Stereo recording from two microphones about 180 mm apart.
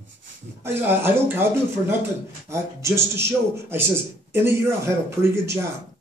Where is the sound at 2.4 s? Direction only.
15° right (ahead or behind).